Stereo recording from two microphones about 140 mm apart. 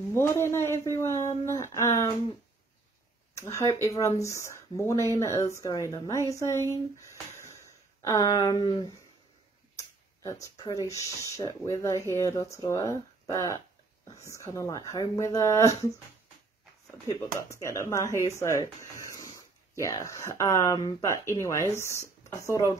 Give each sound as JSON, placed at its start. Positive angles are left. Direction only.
{"t": 0.1, "sound": "speech", "side_deg": 20}
{"t": 3.3, "sound": "speech", "side_deg": 20}
{"t": 7.3, "sound": "a sound", "side_deg": 20}
{"t": 10.2, "sound": "speech", "side_deg": 25}
{"t": 17.1, "sound": "speech", "side_deg": 20}